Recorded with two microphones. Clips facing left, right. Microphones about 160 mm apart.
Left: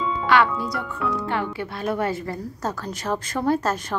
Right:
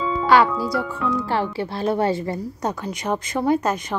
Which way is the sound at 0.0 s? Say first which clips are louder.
Right 3 dB; centre (ahead or behind).